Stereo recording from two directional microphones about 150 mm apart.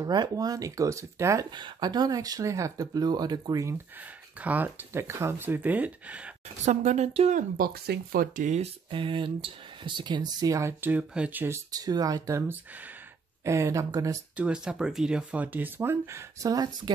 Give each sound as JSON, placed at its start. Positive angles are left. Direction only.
{"t": 0.0, "sound": "speech", "side_deg": -25}
{"t": 4.4, "sound": "speech", "side_deg": -10}
{"t": 6.6, "sound": "speech", "side_deg": -50}
{"t": 8.9, "sound": "speech", "side_deg": -35}
{"t": 14.3, "sound": "speech", "side_deg": -5}